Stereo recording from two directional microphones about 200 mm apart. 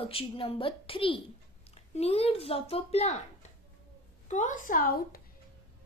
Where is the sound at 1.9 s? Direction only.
30° left (ahead or behind).